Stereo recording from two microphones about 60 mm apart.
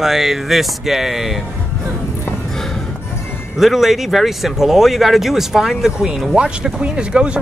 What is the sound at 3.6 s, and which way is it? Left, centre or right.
Speech, centre.